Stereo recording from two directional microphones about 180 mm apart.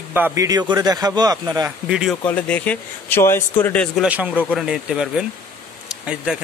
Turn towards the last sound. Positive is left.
turn(degrees=-5)  # may be behind; listen again after turning